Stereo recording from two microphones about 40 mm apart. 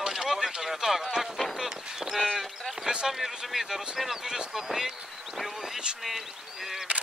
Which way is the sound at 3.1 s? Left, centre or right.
Centre.